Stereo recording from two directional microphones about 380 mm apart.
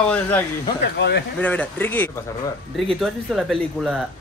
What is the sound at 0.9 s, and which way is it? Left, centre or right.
Speech, left.